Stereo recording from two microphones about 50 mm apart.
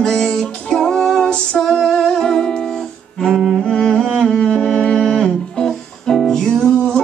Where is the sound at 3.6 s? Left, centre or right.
Centre.